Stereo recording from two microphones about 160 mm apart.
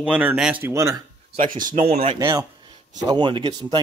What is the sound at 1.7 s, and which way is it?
Speech, 40° right (ahead or behind).